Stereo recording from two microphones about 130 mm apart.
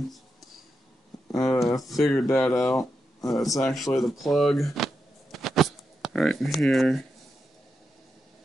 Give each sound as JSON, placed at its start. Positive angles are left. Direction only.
{"t": 1.3, "sound": "speech", "side_deg": 0}
{"t": 2.8, "sound": "a sound", "side_deg": 25}
{"t": 3.3, "sound": "speech", "side_deg": 0}